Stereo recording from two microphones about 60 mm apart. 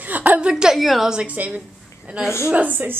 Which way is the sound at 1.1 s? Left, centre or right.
Right.